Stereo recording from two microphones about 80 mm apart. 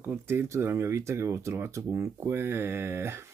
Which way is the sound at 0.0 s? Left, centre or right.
Right.